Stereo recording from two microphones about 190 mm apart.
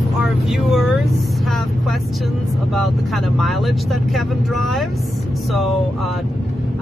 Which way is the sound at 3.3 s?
Centre (ahead or behind).